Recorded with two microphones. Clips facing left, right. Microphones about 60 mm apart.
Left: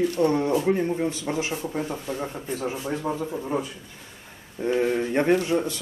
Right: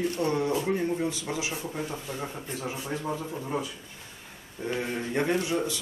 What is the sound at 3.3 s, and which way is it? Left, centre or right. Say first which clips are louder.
Speech: left 4 dB; centre.